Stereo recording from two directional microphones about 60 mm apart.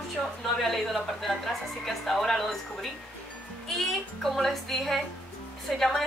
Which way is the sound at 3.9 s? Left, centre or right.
Centre.